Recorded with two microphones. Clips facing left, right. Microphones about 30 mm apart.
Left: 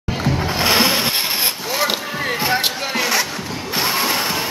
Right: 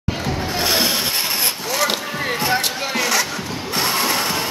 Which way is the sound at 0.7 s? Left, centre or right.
Left.